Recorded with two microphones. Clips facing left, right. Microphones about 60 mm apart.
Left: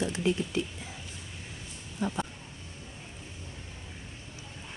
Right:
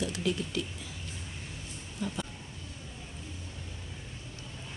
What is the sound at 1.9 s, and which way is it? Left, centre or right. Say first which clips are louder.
Speech: left 4 dB; left.